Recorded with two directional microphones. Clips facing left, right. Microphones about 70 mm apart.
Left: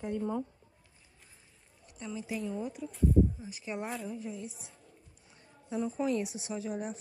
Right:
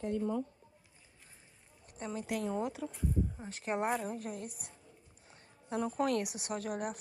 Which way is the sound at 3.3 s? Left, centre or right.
Right.